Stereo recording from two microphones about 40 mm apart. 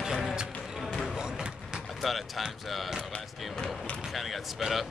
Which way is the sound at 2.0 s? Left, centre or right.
Centre.